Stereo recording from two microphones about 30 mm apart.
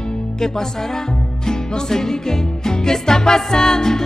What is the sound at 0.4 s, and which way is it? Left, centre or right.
Music, left.